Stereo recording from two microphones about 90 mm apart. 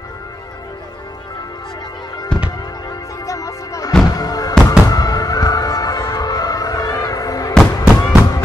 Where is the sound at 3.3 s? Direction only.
40° left (ahead or behind).